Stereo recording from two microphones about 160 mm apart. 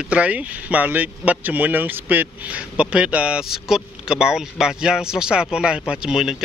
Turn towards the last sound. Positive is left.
turn(degrees=-5)  # may be behind; listen again after turning